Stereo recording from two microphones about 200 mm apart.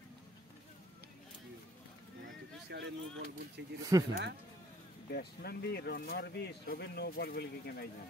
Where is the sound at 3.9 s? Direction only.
15° right (ahead or behind).